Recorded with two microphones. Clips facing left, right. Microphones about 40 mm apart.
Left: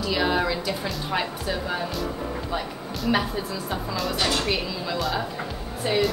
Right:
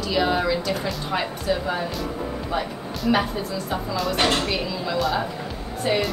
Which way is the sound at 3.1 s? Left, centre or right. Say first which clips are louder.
Right 2 dB; centre.